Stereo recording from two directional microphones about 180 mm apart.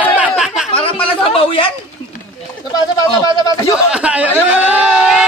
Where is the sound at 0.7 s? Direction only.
30° left (ahead or behind).